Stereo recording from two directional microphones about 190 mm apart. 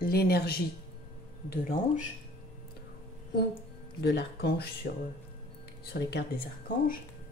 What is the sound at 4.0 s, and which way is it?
Speech, 60° left (ahead or behind).